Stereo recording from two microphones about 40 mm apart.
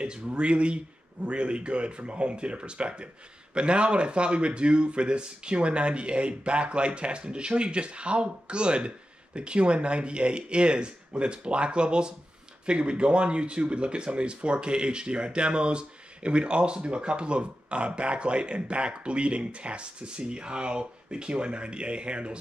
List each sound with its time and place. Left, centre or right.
0.0 s speech: right